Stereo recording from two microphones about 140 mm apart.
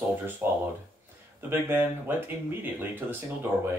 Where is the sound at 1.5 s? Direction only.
15° right (ahead or behind).